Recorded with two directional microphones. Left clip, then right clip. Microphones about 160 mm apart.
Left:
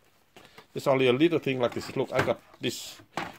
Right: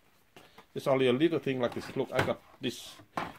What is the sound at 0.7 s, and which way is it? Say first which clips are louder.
Speech: left 4 dB; 40° left (ahead or behind).